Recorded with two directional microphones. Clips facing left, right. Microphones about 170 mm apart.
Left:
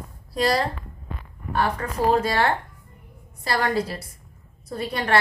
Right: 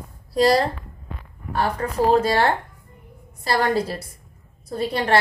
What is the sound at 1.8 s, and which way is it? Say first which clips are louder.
A woman's voice: right 5 dB; 35° right (ahead or behind).